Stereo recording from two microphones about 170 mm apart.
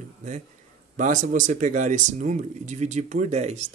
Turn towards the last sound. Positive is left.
turn(degrees=-40)  # may be behind; listen again after turning